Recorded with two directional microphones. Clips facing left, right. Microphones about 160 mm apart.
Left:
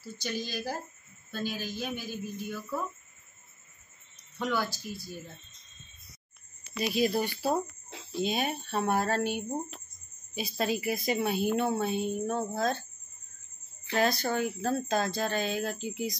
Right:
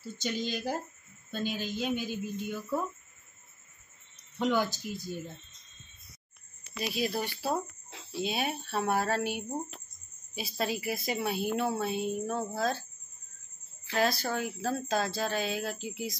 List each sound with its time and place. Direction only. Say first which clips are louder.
0.2 s speech: right 2 dB; 20° right (ahead or behind)
4.4 s speech: right 3 dB; 20° right (ahead or behind)
6.8 s a woman's voice: left 4 dB; centre (ahead or behind)
13.8 s a woman's voice: left 1 dB; centre (ahead or behind)